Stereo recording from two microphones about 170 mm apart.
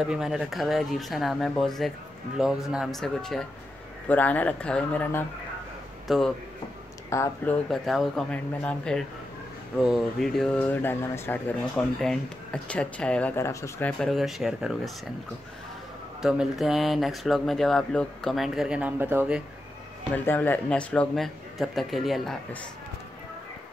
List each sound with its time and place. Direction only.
0.0 s speech: 5° right (ahead or behind)
6.0 s speech: centre (ahead or behind)
7.1 s speech: 15° left (ahead or behind)
7.7 s speech: centre (ahead or behind)
16.2 s speech: centre (ahead or behind)
20.2 s speech: 10° left (ahead or behind)